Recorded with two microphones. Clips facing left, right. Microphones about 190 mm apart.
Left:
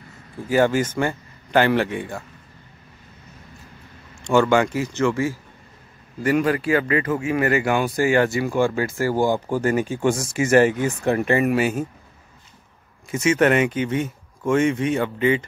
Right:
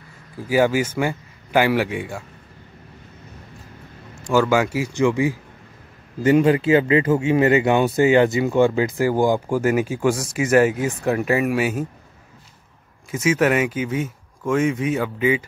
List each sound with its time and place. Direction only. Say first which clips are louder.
0.5 s speech: even; 10° right (ahead or behind)
4.3 s speech: left 1 dB; 5° right (ahead or behind)
13.1 s speech: left 1 dB; 5° right (ahead or behind)